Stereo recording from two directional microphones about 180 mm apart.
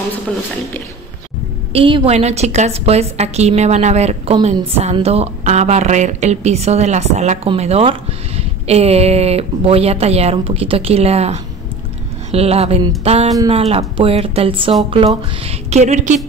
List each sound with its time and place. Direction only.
1.7 s a woman's voice: 30° right (ahead or behind)